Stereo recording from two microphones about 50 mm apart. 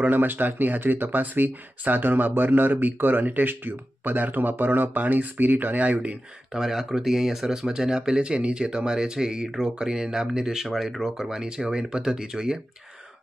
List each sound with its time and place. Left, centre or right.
0.0 s speech: right
5.9 s speech: centre
6.6 s speech: centre